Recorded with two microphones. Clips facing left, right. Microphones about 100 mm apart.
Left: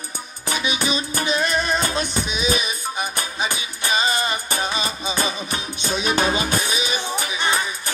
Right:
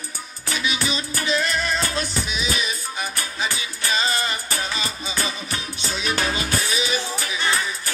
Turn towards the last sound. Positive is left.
turn(degrees=20)  # may be behind; listen again after turning